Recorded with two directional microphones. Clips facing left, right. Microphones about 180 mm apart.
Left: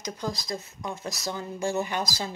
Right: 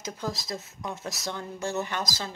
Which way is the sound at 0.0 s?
Centre (ahead or behind).